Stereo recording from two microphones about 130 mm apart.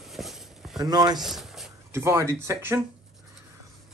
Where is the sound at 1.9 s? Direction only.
20° right (ahead or behind).